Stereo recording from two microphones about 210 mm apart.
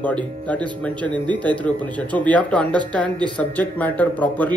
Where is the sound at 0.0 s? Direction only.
5° left (ahead or behind).